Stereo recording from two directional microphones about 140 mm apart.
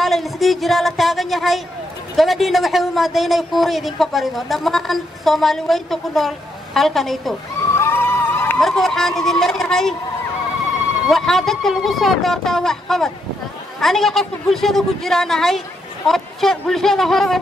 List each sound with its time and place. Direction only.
0.0 s speech: centre (ahead or behind)
7.7 s a sound: 15° left (ahead or behind)
8.5 s speech: centre (ahead or behind)
11.1 s speech: centre (ahead or behind)